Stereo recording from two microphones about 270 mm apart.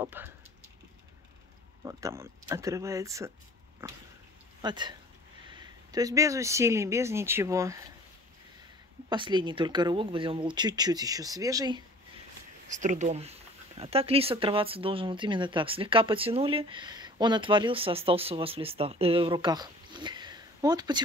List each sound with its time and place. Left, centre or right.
0.0 s speech: centre
1.9 s speech: centre
9.1 s speech: centre
12.6 s speech: right